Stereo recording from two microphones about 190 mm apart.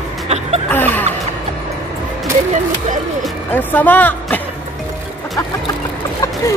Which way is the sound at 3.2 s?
10° left (ahead or behind).